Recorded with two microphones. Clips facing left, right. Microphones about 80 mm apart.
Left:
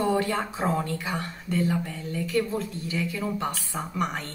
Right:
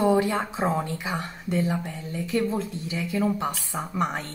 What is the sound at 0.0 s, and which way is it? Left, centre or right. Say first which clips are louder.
A woman's voice: right 3 dB; centre.